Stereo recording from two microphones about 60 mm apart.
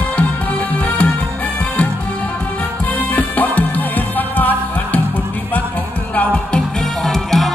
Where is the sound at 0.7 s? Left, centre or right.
Left.